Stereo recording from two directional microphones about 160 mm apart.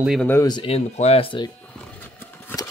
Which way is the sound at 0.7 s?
40° left (ahead or behind).